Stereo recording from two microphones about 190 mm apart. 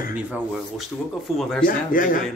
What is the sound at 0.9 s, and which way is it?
Speech, 10° left (ahead or behind).